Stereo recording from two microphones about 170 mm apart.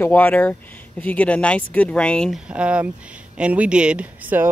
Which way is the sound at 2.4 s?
5° right (ahead or behind).